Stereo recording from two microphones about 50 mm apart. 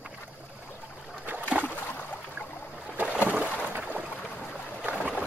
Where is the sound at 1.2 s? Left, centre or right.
Right.